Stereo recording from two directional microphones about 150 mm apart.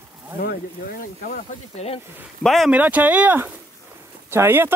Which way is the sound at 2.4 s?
Centre (ahead or behind).